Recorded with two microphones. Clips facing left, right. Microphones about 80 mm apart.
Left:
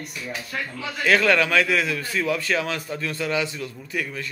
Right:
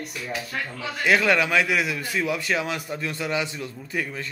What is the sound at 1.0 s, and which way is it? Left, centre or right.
A man's voice, centre.